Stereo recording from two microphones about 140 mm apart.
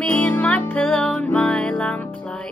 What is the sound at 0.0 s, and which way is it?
Music, 10° left (ahead or behind).